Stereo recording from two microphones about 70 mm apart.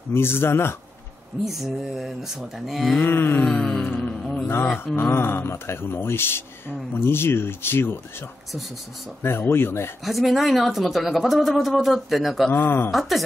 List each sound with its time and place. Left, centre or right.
0.1 s speech: left
1.4 s speech: centre
3.0 s speech: left
3.4 s a sound: centre
4.5 s speech: left
9.2 s speech: left
10.0 s speech: centre
12.5 s speech: left